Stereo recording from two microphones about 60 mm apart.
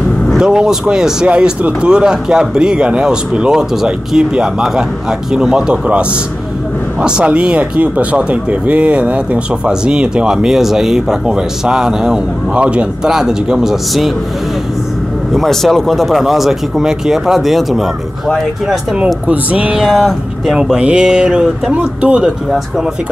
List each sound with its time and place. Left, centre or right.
0.4 s speech: centre
15.3 s speech: centre
19.2 s speech: right
19.8 s speech: centre